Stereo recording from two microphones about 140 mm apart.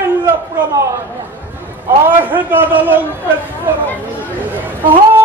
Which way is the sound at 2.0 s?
15° right (ahead or behind).